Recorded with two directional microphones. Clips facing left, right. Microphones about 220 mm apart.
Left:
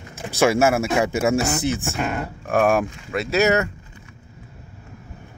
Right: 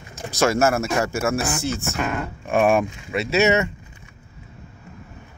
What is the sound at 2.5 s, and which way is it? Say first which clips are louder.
Speech: even; centre (ahead or behind).